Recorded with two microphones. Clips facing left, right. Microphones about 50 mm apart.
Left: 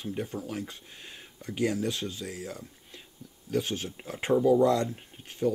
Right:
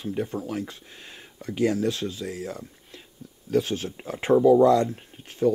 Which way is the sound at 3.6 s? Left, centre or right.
Centre.